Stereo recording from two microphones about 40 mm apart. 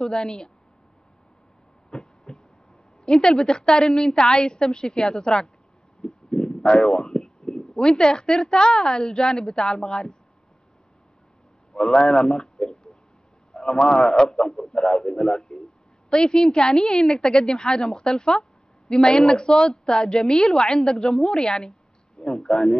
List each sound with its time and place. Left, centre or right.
0.0 s a woman's voice: left
1.9 s a sound: centre
3.1 s a woman's voice: left
6.0 s a sound: left
7.2 s a woman's voice: centre
11.7 s a man's voice: centre